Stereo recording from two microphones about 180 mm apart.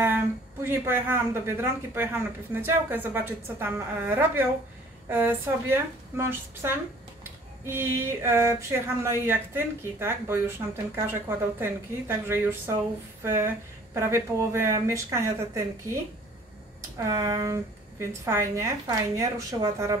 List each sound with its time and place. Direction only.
0.0 s a woman's voice: 10° right (ahead or behind)
17.0 s a woman's voice: 20° right (ahead or behind)